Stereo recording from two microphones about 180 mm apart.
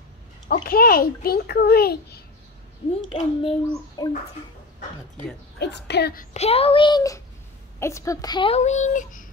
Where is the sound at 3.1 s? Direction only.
30° left (ahead or behind).